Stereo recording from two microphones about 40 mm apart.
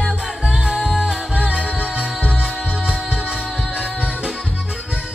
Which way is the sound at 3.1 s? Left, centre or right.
Right.